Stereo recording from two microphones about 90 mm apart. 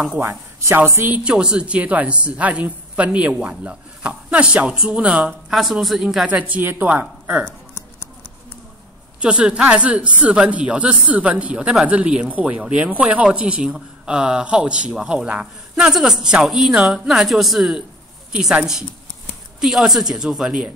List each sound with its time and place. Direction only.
0.2 s speech: 30° right (ahead or behind)
1.2 s speech: 10° right (ahead or behind)
5.6 s a woman's voice: centre (ahead or behind)
6.2 s speech: 15° right (ahead or behind)
9.2 s a woman's voice: 10° right (ahead or behind)